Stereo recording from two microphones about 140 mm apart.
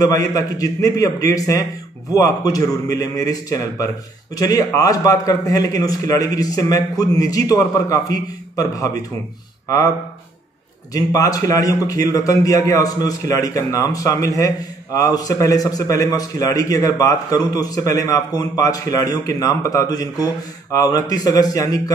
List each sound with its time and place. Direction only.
0.0 s a man's voice: 25° left (ahead or behind)
10.9 s a man's voice: 25° left (ahead or behind)